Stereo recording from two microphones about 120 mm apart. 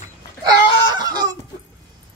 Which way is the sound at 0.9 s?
35° right (ahead or behind).